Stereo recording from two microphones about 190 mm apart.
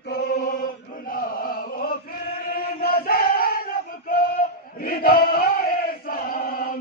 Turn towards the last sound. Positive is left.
turn(degrees=50)  # may be behind; listen again after turning